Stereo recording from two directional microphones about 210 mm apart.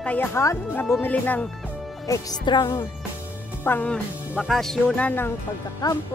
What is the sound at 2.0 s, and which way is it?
A woman's voice, 20° left (ahead or behind).